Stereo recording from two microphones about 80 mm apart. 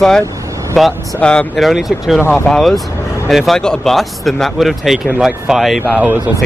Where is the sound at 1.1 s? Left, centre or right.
Centre.